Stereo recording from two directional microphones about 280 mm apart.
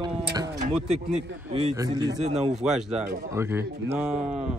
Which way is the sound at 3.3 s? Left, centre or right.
Centre.